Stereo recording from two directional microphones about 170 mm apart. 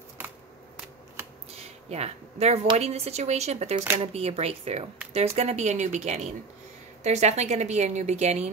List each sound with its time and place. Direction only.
1.6 s speech: 40° right (ahead or behind)